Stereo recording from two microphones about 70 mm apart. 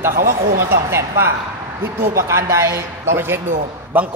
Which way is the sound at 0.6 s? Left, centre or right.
Right.